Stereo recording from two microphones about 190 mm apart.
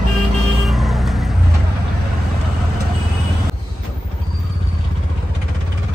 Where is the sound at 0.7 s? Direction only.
Centre (ahead or behind).